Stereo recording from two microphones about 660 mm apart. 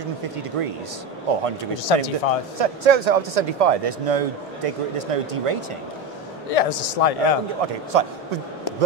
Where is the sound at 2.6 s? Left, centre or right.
Right.